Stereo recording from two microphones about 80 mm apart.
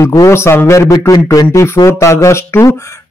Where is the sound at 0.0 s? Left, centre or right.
Left.